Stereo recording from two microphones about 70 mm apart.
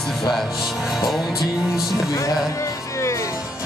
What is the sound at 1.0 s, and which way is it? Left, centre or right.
Music, centre.